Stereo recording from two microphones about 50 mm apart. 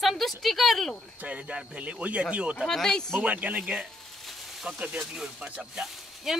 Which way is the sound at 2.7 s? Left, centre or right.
Centre.